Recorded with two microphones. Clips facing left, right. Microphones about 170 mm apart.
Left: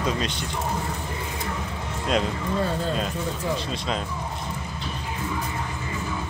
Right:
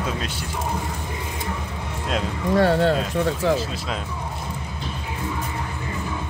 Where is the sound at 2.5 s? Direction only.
80° right.